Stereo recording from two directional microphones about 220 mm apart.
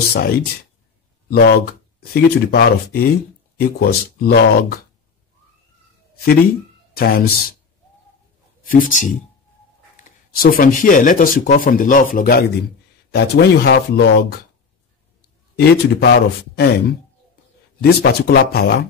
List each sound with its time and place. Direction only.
0.1 s speech: 45° left (ahead or behind)
7.0 s speech: 45° left (ahead or behind)
8.6 s speech: 40° left (ahead or behind)
15.5 s speech: 50° left (ahead or behind)